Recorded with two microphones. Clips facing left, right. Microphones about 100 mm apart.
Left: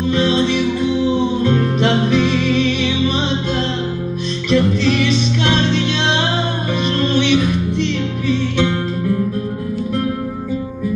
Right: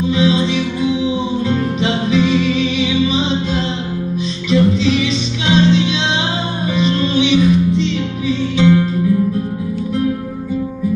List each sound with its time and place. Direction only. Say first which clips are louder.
0.1 s music: even; 55° left (ahead or behind)